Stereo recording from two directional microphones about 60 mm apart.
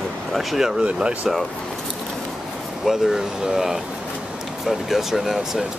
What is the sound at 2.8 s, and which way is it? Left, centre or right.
Speech, centre.